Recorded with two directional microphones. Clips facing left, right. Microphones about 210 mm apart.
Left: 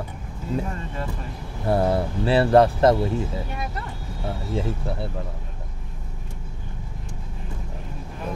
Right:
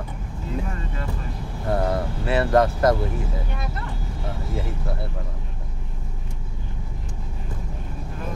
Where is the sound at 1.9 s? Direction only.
30° left (ahead or behind).